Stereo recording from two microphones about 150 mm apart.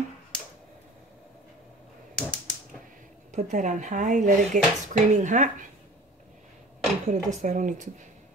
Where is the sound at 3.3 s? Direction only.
60° right (ahead or behind).